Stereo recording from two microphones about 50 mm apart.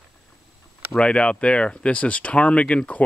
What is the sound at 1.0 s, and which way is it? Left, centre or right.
Speech, left.